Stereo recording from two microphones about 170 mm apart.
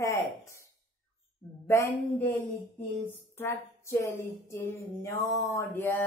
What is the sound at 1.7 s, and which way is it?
Speech, 15° left (ahead or behind).